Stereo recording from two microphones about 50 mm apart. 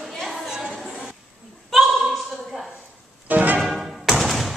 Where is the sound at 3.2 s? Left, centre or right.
Right.